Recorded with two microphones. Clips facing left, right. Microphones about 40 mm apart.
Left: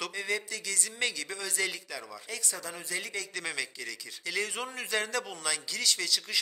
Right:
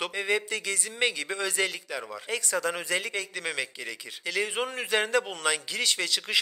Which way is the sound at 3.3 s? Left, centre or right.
Right.